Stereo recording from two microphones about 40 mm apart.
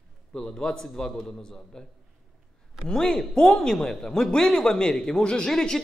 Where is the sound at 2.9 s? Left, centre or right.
Centre.